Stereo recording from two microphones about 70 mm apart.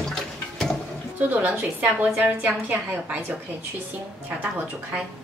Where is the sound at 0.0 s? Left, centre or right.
Centre.